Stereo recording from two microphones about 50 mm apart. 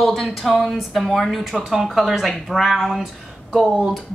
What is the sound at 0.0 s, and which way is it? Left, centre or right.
A woman's voice, centre.